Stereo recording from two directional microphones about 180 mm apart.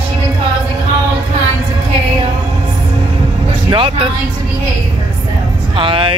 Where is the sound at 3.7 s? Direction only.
30° right (ahead or behind).